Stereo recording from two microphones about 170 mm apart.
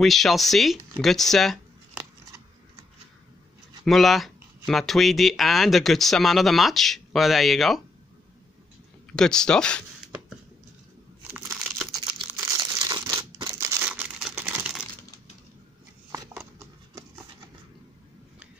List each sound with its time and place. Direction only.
0.0 s speech: centre (ahead or behind)
3.8 s speech: centre (ahead or behind)
9.1 s speech: 5° left (ahead or behind)
11.3 s crumpling: 10° right (ahead or behind)
11.9 s crumpling: 25° right (ahead or behind)
12.3 s crumpling: 15° right (ahead or behind)